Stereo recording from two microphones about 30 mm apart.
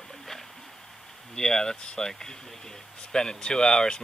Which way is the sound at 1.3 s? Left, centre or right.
Left.